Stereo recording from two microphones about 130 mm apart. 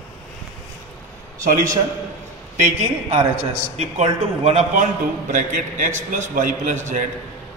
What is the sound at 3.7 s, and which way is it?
Speech, 55° right (ahead or behind).